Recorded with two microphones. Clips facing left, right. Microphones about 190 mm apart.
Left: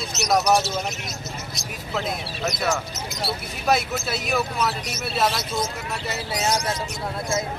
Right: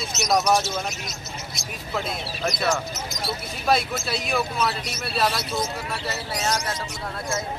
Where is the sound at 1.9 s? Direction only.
5° left (ahead or behind).